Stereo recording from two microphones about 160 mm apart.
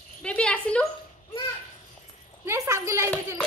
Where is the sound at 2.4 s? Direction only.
20° right (ahead or behind).